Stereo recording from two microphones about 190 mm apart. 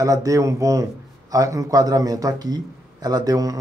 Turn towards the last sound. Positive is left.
turn(degrees=-20)  # may be behind; listen again after turning